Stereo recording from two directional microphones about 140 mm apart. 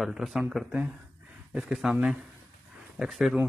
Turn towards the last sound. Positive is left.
turn(degrees=-5)  # may be behind; listen again after turning